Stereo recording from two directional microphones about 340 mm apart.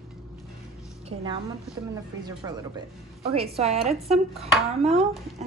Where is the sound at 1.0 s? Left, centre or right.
Centre.